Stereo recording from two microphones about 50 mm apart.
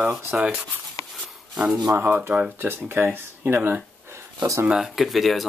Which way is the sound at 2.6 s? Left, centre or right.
Right.